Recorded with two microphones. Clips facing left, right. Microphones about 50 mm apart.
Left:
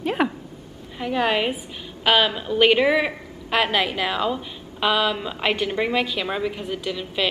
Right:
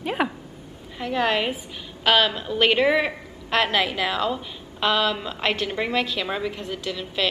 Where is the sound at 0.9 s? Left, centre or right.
Centre.